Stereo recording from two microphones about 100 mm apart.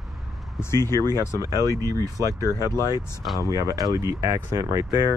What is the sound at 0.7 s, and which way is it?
Speech, 25° left (ahead or behind).